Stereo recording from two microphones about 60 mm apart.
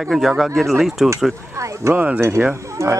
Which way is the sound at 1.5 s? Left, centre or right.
Right.